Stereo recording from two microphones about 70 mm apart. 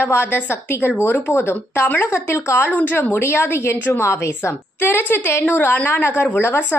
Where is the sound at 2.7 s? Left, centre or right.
Left.